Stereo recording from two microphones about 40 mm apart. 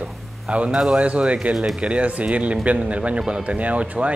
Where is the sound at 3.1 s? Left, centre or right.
Centre.